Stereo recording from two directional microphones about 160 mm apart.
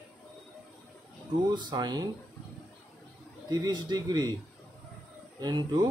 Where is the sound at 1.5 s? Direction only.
25° right (ahead or behind).